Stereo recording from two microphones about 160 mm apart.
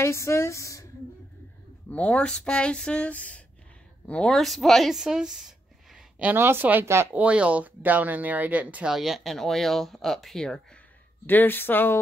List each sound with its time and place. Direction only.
0.0 s speech: 15° left (ahead or behind)
1.9 s speech: 10° left (ahead or behind)